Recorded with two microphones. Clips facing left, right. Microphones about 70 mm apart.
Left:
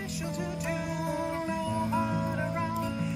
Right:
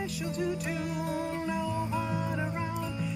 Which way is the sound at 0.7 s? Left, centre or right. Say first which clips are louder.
Even; left.